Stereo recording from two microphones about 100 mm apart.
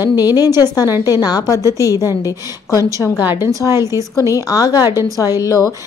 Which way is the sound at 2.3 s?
30° right (ahead or behind).